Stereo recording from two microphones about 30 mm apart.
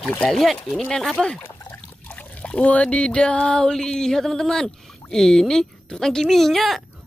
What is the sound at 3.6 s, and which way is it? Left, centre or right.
Speech, centre.